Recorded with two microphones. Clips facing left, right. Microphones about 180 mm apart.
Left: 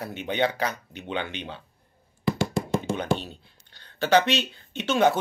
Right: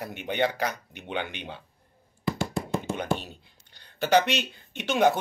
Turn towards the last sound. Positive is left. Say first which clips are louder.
# left 1 dB
turn(degrees=-15)  # may be behind; listen again after turning